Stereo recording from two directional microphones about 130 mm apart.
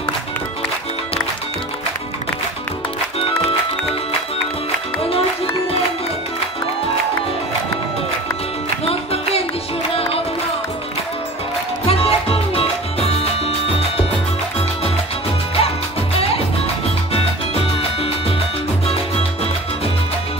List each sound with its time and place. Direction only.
3.2 s music: 45° left (ahead or behind)
5.1 s music: 45° left (ahead or behind)
8.8 s music: 50° left (ahead or behind)
11.9 s music: 50° left (ahead or behind)
17.1 s salsa music: 50° left (ahead or behind)